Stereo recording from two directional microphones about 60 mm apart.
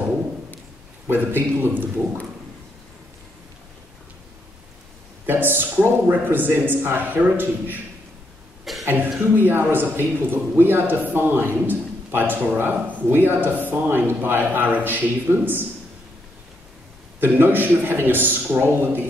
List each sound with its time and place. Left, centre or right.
1.0 s a man's voice: right
5.2 s a man's voice: right
8.8 s a man's voice: right
17.2 s a man's voice: right